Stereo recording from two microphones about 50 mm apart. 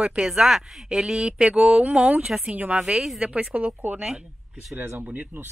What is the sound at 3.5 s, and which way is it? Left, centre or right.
Speech, right.